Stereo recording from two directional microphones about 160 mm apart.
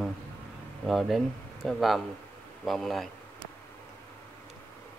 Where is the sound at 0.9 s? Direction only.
Centre (ahead or behind).